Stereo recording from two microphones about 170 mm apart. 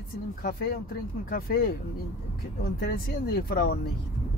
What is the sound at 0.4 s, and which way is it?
Speech, 60° left (ahead or behind).